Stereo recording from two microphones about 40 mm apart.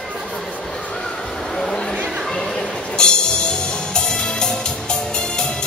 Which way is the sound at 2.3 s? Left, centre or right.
Centre.